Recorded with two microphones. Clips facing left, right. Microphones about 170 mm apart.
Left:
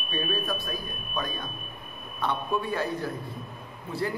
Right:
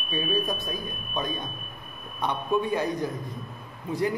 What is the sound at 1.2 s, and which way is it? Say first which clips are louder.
A man's voice: right 2 dB; 20° right (ahead or behind).